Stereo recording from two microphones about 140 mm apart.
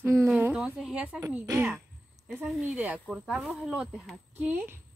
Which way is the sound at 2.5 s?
5° right (ahead or behind).